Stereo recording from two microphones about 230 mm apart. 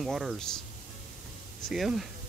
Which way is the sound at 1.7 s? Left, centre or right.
Centre.